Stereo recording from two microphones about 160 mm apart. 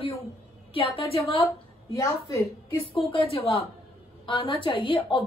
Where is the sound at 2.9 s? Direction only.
35° left (ahead or behind).